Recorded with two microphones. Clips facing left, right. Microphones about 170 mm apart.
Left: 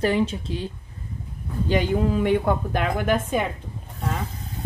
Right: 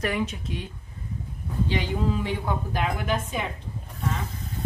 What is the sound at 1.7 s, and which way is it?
A woman's voice, 55° left (ahead or behind).